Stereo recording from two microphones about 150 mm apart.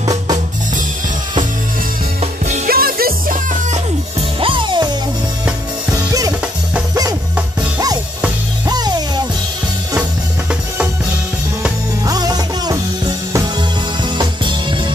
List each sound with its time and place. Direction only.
0.0 s drum kit: 25° right (ahead or behind)
2.6 s music: 85° right
4.4 s music: 35° right (ahead or behind)
8.6 s music: 25° right (ahead or behind)
12.1 s music: 25° right (ahead or behind)
14.1 s music: 35° right (ahead or behind)